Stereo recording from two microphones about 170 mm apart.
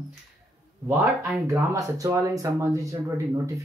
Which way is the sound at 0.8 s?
15° right (ahead or behind).